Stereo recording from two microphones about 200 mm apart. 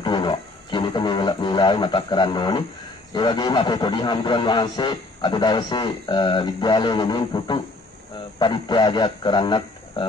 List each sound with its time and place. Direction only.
0.0 s speech: 25° left (ahead or behind)